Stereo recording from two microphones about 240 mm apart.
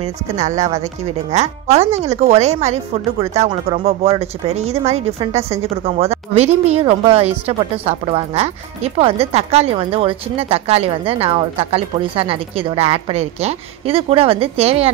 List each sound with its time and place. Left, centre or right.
0.0 s a woman's voice: right